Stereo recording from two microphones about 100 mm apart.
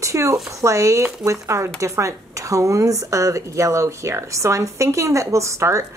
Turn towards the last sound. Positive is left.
turn(degrees=-30)  # may be behind; listen again after turning